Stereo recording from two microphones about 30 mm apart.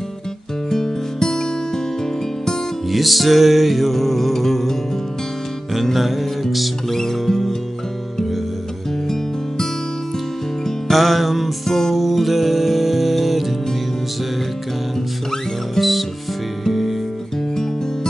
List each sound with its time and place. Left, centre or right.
0.7 s music: centre
2.9 s music: centre
5.9 s music: centre
9.0 s music: centre
10.9 s music: centre
11.7 s music: centre
12.0 s music: centre
15.8 s music: centre